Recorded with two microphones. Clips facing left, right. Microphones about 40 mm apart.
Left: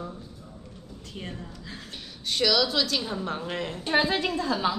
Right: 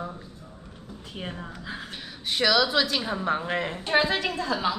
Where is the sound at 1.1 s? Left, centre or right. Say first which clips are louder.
Right 3 dB; right.